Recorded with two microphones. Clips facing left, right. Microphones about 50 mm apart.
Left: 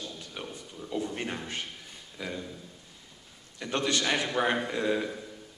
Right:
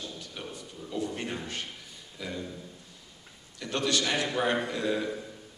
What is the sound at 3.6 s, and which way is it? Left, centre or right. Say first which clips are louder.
A man's voice: even; left.